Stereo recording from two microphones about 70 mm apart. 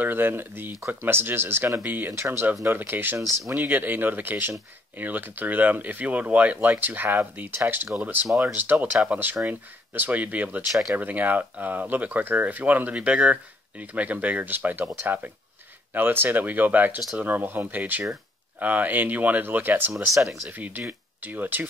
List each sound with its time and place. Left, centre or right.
0.0 s speech: right
10.7 s speech: centre
11.0 s speech: right
13.1 s speech: centre
13.7 s speech: right